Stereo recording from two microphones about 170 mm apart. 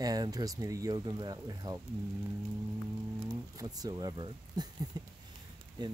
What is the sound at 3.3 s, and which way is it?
Speech, 20° right (ahead or behind).